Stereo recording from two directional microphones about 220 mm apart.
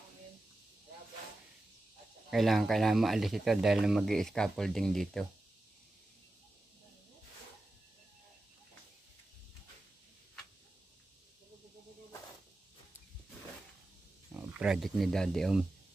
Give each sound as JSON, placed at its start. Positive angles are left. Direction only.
{"t": 2.3, "sound": "speech", "side_deg": 0}
{"t": 14.3, "sound": "speech", "side_deg": -5}